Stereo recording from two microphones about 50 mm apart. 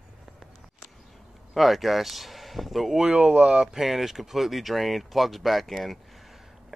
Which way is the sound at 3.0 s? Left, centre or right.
Right.